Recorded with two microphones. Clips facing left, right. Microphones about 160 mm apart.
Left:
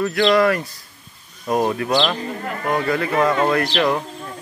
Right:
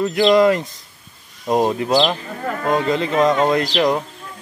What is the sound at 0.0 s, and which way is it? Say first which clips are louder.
Speech: right 3 dB; 20° right (ahead or behind).